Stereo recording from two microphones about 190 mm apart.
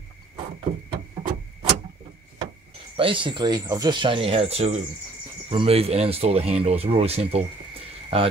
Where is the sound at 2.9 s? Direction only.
25° right (ahead or behind).